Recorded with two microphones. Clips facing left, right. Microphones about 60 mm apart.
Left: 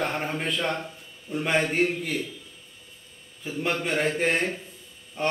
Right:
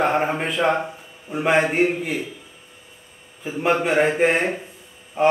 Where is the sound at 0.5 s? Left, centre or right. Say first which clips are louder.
Right 8 dB; centre.